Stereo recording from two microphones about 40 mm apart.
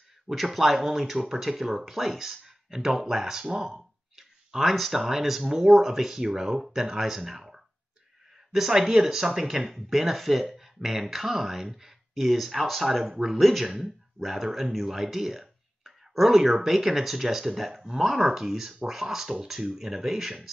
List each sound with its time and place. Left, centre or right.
0.3 s speech: centre
4.6 s speech: centre
14.9 s a sound: centre
16.6 s speech: centre